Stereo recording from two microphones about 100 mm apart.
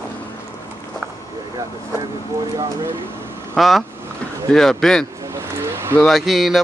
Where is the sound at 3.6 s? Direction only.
Centre (ahead or behind).